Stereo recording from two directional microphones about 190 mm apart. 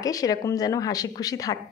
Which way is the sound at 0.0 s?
20° left (ahead or behind).